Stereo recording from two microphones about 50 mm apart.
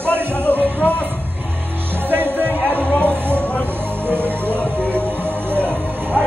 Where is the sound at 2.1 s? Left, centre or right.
Right.